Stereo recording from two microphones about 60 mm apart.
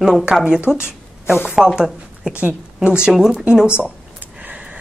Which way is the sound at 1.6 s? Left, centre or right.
Centre.